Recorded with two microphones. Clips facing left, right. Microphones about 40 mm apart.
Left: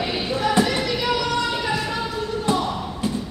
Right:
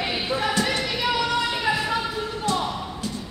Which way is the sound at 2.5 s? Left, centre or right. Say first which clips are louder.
Left 3 dB; left.